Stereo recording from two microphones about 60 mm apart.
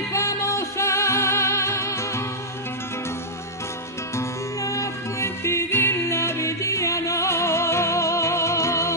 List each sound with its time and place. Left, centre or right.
0.1 s music: left
4.2 s music: left
5.2 s music: left